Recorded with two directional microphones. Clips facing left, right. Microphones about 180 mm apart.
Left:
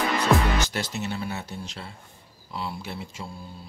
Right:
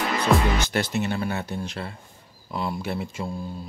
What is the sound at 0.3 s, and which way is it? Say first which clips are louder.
Music: right 1 dB; centre (ahead or behind).